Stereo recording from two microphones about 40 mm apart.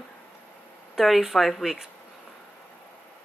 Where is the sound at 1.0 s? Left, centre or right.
Centre.